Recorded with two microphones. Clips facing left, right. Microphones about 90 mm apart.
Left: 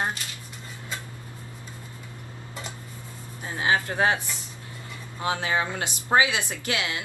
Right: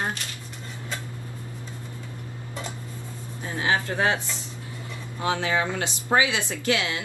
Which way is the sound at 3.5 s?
25° left (ahead or behind).